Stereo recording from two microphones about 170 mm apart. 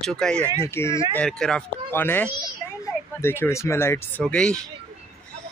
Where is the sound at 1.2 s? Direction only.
5° left (ahead or behind).